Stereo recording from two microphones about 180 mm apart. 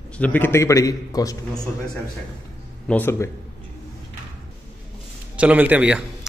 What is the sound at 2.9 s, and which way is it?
Speech, 15° left (ahead or behind).